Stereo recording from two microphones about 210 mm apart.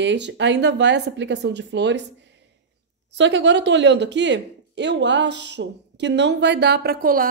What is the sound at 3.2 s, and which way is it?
Speech, 60° right (ahead or behind).